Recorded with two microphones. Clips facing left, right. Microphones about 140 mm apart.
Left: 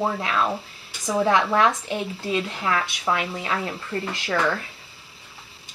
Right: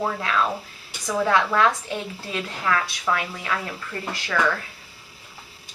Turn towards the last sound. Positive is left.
turn(degrees=20)  # may be behind; listen again after turning